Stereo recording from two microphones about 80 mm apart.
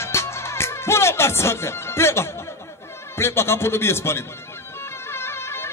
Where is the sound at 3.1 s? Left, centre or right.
Left.